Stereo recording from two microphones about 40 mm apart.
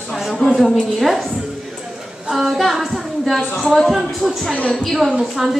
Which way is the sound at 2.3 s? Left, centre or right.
Centre.